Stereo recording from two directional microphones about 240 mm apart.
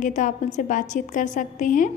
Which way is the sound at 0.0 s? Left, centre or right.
Left.